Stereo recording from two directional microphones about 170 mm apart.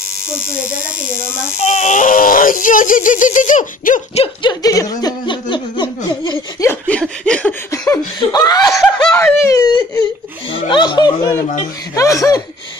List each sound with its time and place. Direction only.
0.6 s a sound: 50° left (ahead or behind)
4.2 s speech: 25° left (ahead or behind)
6.0 s laughter: 25° left (ahead or behind)
6.7 s chuckle: 5° left (ahead or behind)
7.9 s a sound: 20° left (ahead or behind)
10.5 s speech: 30° left (ahead or behind)
11.9 s laughter: 20° left (ahead or behind)